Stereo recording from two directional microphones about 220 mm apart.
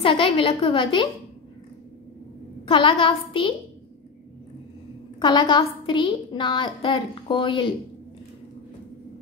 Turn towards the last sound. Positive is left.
turn(degrees=25)  # may be behind; listen again after turning